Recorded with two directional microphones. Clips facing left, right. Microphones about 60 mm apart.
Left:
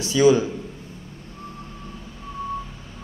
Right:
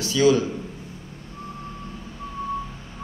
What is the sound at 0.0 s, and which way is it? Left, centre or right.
Speech, left.